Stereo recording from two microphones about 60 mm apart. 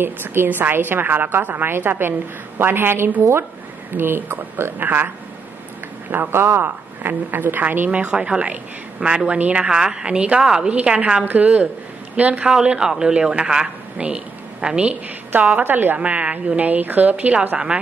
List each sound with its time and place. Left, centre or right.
0.0 s a woman's voice: right
6.3 s a man's voice: right
7.0 s a woman's voice: right
7.9 s a woman's voice: centre
15.6 s a woman's voice: right
16.0 s a woman's voice: right